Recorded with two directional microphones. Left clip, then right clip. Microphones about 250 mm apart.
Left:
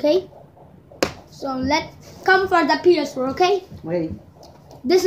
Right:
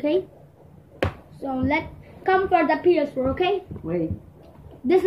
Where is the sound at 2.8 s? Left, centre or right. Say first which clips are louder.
Left 2 dB; centre.